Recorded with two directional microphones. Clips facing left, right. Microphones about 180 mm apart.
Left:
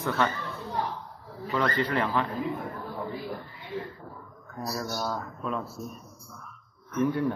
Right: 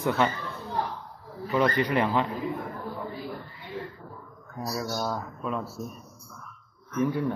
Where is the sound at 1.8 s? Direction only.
15° right (ahead or behind).